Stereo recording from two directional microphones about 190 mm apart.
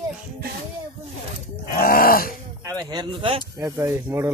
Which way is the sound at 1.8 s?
50° left (ahead or behind).